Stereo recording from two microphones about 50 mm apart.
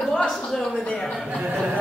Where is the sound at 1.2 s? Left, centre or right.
Right.